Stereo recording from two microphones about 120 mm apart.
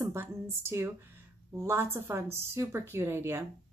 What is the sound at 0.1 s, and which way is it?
A woman's voice, 20° right (ahead or behind).